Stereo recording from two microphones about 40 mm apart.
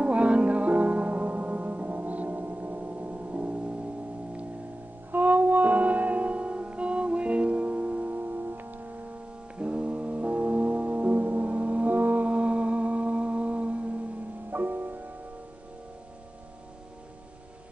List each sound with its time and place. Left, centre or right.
0.0 s music: right
5.1 s music: right
8.2 s music: right
9.6 s music: right
14.5 s music: right